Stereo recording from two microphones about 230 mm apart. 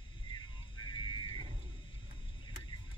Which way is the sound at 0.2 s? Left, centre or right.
Left.